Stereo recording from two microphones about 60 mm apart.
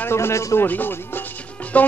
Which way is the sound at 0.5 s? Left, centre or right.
Left.